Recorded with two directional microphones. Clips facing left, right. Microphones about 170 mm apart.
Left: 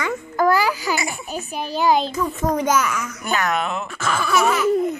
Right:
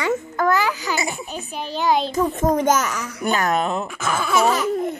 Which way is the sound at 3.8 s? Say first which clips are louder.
Even; 15° right (ahead or behind).